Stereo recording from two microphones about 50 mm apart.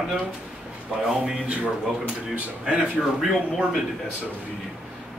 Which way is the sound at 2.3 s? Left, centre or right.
Right.